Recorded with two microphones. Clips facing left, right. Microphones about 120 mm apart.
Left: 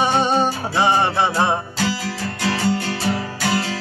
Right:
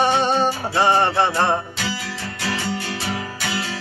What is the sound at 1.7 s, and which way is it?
Music, 40° left (ahead or behind).